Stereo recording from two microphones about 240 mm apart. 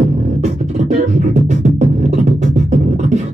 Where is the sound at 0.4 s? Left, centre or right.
Right.